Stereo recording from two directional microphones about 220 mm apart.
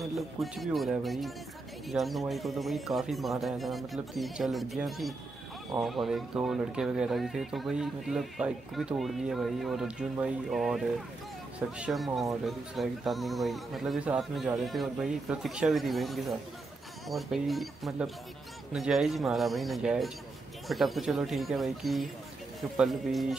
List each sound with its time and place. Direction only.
0.0 s speech: centre (ahead or behind)